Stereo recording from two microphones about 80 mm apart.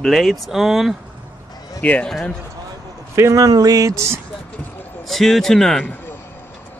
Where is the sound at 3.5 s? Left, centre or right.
Right.